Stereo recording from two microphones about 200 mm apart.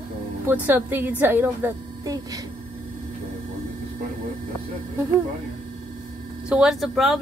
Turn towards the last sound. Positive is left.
turn(degrees=0)  # may be behind; listen again after turning